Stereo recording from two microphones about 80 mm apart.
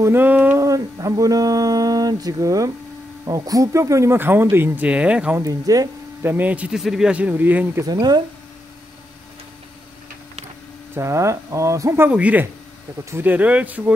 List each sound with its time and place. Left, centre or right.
0.0 s speech: right
0.6 s speech: right
4.8 s speech: centre
5.4 s speech: right
6.2 s speech: right
6.8 s speech: centre; by 7.8 s right
7.8 s speech: right
11.0 s speech: right
12.1 s speech: centre